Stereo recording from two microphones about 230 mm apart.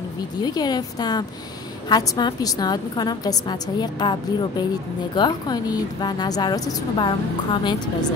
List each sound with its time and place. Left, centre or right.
0.4 s a woman's voice: centre